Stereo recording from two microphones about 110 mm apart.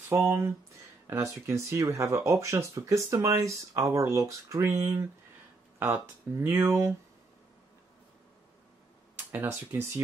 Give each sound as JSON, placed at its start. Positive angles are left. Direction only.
{"t": 0.1, "sound": "speech", "side_deg": -25}
{"t": 6.3, "sound": "speech", "side_deg": -20}
{"t": 9.3, "sound": "speech", "side_deg": -20}